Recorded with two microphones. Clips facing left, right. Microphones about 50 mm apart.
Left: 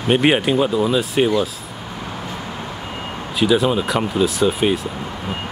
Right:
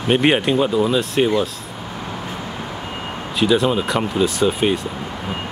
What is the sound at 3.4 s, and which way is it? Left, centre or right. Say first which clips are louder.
Speech: even; centre.